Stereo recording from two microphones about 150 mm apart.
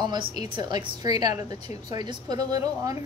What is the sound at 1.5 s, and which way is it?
Speech, 40° left (ahead or behind).